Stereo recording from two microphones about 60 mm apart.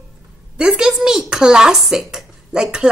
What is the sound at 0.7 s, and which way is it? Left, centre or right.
Speech, centre.